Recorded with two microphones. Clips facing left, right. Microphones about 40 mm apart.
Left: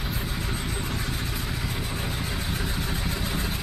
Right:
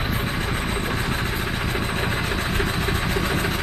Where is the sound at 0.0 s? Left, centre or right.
Right.